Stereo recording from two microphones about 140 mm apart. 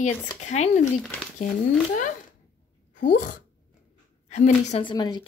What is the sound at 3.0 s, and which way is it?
Speech, 75° left (ahead or behind).